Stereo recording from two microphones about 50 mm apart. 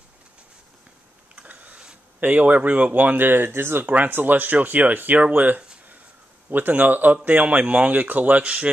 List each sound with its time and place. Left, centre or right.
1.3 s a sound: right
2.1 s speech: right
3.9 s speech: right
6.5 s speech: right